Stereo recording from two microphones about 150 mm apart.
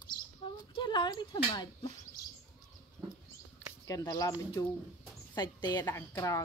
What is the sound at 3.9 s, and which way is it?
Speech, 25° left (ahead or behind).